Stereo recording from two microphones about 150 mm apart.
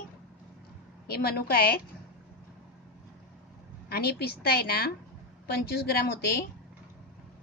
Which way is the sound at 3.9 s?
90° left.